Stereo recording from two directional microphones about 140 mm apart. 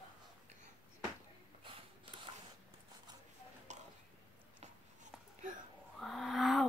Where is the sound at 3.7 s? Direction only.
60° right (ahead or behind).